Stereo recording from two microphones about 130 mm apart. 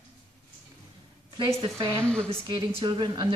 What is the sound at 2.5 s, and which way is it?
Speech, 40° right (ahead or behind).